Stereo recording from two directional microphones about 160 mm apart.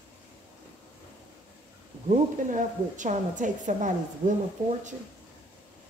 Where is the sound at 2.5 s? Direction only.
50° right (ahead or behind).